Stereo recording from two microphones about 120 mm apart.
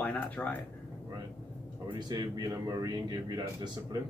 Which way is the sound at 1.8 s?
40° right (ahead or behind).